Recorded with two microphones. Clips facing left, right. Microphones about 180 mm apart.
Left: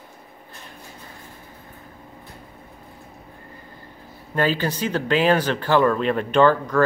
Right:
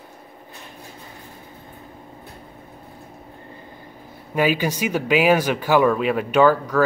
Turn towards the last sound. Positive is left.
turn(degrees=-5)  # may be behind; listen again after turning